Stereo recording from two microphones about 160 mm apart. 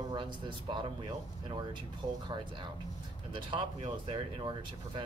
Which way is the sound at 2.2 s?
30° right (ahead or behind).